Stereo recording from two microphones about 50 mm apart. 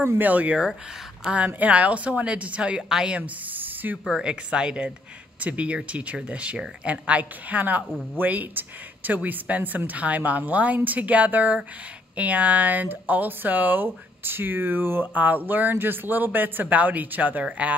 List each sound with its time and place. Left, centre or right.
0.0 s speech: right
4.2 s speech: centre
5.4 s speech: right